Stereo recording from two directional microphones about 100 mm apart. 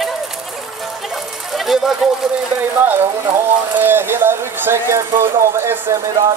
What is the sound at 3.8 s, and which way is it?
Speech, 20° right (ahead or behind).